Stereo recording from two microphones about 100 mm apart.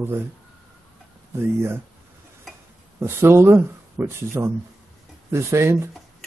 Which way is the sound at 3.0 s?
25° right (ahead or behind).